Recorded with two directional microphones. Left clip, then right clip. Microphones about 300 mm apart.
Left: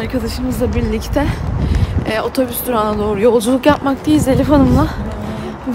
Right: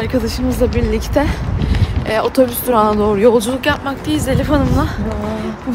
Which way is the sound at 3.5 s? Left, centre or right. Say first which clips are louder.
Left 4 dB; left.